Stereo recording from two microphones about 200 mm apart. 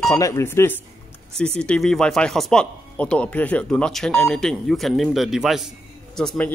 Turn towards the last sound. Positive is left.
turn(degrees=5)  # may be behind; listen again after turning